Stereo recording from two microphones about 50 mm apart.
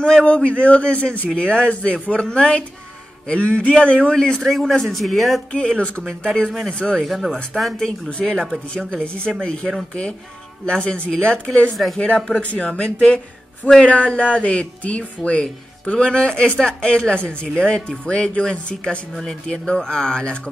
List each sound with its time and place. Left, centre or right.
0.0 s speech: centre
1.3 s speech: centre
4.4 s speech: centre
5.5 s speech: centre
6.0 s speech: centre
6.7 s speech: left
7.0 s speech: centre
7.5 s speech: centre
8.1 s speech: centre
19.1 s speech: centre